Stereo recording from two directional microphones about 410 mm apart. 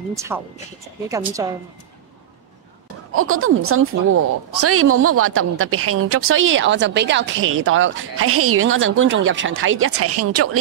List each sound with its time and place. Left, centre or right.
0.1 s speech: centre
1.4 s speech: centre
3.2 s a woman's voice: right